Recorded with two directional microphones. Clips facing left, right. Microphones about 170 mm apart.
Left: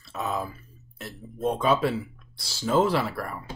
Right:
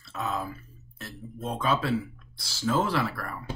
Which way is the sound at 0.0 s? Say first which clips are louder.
Left 2 dB; 15° left (ahead or behind).